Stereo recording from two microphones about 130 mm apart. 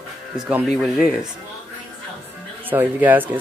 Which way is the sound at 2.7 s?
15° right (ahead or behind).